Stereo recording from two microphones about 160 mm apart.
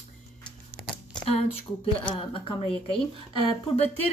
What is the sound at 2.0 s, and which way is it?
Speech, 30° left (ahead or behind).